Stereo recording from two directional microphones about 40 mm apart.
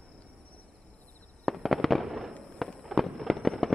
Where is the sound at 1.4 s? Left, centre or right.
Centre.